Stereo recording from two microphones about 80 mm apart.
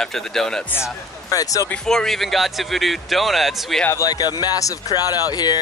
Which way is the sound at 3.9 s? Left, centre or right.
Left.